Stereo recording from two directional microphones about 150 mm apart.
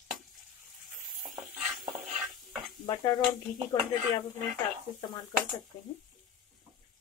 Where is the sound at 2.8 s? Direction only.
25° left (ahead or behind).